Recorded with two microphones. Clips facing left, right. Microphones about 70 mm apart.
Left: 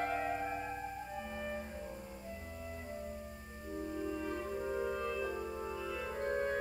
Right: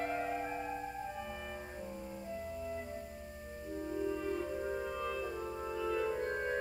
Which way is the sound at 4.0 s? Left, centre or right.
Centre.